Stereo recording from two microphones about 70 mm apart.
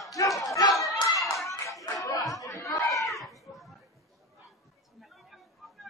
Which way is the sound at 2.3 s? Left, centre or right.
Left.